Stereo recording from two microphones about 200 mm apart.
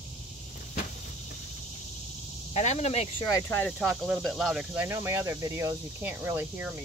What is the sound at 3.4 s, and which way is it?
Speech, 10° left (ahead or behind).